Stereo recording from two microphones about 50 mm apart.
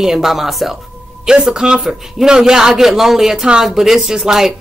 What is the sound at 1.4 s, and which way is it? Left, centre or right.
A man's voice, centre.